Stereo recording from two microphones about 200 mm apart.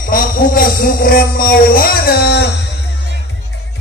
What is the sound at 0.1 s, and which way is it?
Speech, 45° left (ahead or behind).